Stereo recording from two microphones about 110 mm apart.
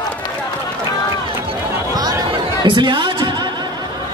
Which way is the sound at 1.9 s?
35° right (ahead or behind).